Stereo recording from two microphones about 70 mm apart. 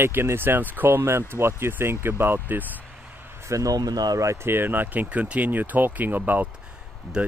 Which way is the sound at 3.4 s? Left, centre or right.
Right.